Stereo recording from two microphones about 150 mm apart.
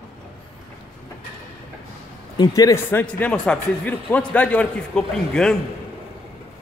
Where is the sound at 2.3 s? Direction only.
25° left (ahead or behind); by 5.6 s 5° left (ahead or behind).